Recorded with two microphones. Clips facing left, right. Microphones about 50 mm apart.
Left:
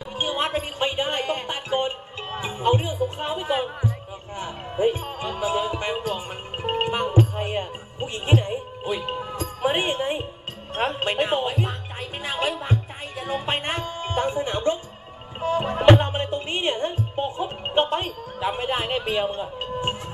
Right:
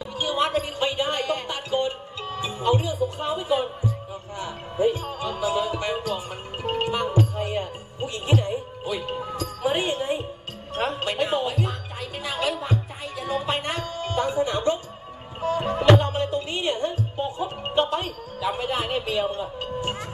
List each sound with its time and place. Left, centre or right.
0.2 s music: left